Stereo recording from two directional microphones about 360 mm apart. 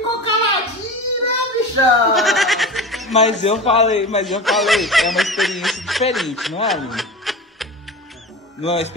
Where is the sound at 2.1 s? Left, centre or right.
Centre.